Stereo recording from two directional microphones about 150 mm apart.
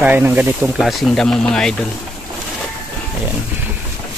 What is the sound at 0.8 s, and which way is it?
Speech, centre (ahead or behind).